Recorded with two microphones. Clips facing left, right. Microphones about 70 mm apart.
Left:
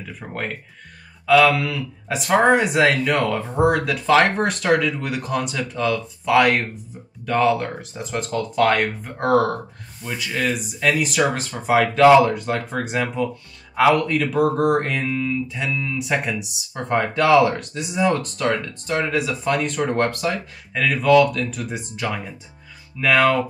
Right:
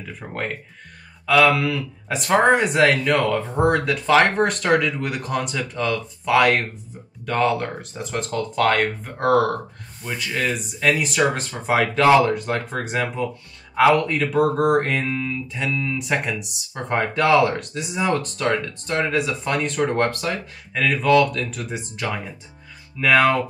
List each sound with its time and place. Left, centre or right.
0.2 s speech: centre